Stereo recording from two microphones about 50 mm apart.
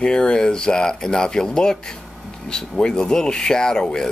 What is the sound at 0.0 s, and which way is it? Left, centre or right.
Speech, centre.